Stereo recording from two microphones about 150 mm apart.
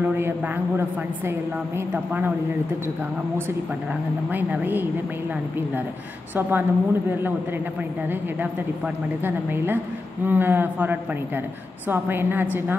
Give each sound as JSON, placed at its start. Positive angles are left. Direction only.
{"t": 4.3, "sound": "a woman's voice", "side_deg": -10}
{"t": 6.3, "sound": "a woman's voice", "side_deg": -15}